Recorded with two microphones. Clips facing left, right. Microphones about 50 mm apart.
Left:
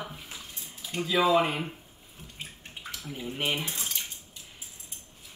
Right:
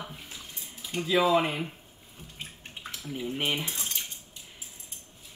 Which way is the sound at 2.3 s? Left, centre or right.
Centre.